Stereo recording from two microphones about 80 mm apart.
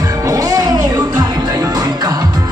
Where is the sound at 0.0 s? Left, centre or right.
Right.